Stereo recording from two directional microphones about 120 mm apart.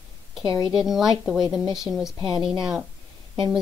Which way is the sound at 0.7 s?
5° right (ahead or behind).